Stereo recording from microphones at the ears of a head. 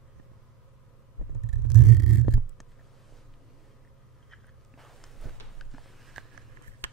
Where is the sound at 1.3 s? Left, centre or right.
Right.